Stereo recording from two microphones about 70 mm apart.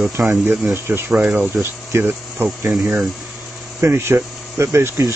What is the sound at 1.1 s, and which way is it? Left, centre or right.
Speech, right.